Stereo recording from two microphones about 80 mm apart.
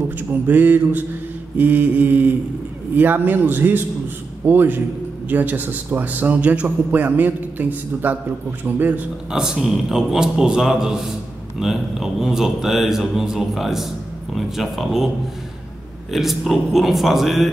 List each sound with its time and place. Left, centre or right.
0.3 s a man's voice: right
9.3 s a man's voice: centre
16.1 s a man's voice: centre